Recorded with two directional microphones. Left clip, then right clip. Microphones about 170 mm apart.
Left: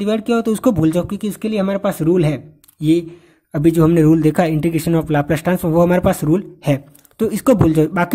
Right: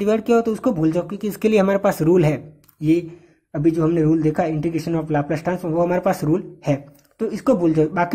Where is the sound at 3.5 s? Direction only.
45° left (ahead or behind).